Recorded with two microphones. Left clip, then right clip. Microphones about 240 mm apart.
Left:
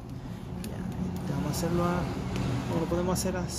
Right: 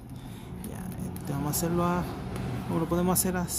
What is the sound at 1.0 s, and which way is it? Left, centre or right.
Vehicle, right.